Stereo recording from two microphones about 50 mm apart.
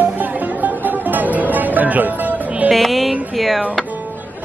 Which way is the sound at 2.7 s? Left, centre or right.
Centre.